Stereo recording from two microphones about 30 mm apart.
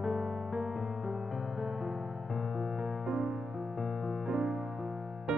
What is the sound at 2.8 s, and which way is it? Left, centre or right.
Music, right.